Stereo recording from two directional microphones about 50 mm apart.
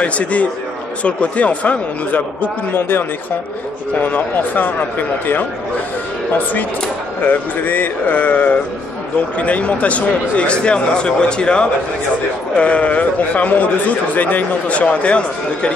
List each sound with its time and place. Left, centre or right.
0.0 s a man's voice: left
7.2 s a man's voice: left